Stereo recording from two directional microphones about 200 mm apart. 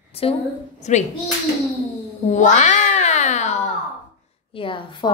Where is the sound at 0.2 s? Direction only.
30° left (ahead or behind).